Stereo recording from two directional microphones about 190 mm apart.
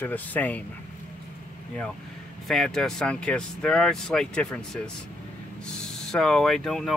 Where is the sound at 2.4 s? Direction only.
Centre (ahead or behind).